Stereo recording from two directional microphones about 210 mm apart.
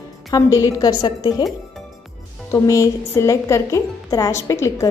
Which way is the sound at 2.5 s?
15° left (ahead or behind).